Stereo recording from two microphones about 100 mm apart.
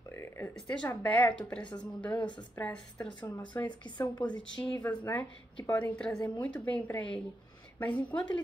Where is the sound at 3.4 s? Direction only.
15° left (ahead or behind).